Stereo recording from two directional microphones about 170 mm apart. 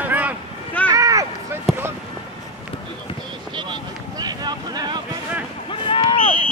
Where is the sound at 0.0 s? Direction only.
10° right (ahead or behind).